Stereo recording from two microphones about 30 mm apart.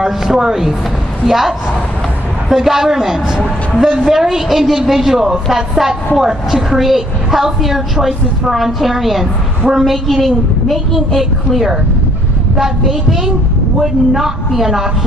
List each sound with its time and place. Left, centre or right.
0.0 s a woman's voice: centre
2.5 s a woman's voice: centre